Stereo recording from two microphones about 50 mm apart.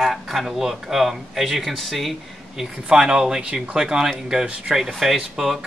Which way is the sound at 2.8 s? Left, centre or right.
Centre.